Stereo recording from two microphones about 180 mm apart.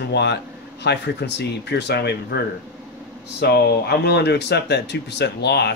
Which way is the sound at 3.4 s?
65° left (ahead or behind).